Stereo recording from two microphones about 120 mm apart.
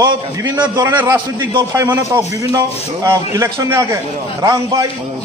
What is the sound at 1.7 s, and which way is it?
A man's voice, 30° right (ahead or behind).